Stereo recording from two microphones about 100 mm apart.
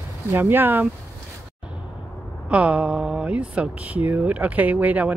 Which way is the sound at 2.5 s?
15° right (ahead or behind).